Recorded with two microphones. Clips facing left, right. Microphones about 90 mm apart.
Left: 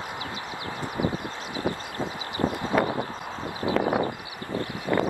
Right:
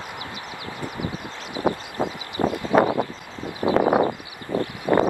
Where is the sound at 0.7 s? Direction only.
25° left (ahead or behind).